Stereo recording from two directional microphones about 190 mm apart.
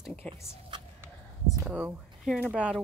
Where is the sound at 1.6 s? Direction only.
5° right (ahead or behind).